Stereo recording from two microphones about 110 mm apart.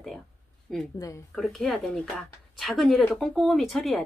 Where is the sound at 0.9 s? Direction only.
30° left (ahead or behind).